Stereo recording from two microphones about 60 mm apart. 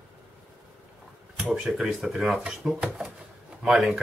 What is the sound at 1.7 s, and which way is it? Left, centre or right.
Speech, centre.